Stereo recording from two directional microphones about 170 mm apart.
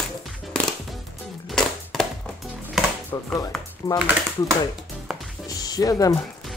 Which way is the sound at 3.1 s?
20° left (ahead or behind).